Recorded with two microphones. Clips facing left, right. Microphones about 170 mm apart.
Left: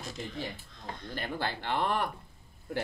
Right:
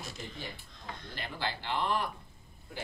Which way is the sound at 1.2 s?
50° left (ahead or behind).